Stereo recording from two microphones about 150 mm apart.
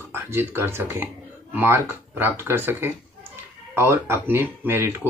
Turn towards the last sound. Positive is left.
turn(degrees=-15)  # may be behind; listen again after turning